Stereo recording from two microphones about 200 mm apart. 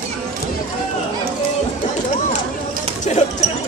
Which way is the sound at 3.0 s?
35° left (ahead or behind).